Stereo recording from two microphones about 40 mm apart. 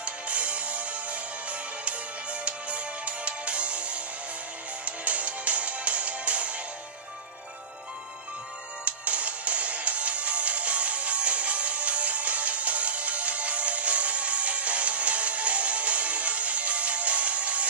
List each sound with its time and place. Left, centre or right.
0.0 s music: right
8.8 s music: right